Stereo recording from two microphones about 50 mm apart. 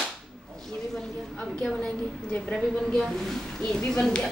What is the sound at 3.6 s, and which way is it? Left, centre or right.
Speech, centre.